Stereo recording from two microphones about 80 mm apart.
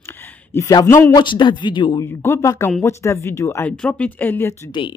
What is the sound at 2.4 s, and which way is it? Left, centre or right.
Speech, left.